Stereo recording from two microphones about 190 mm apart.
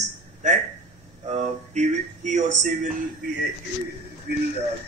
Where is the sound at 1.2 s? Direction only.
35° right (ahead or behind).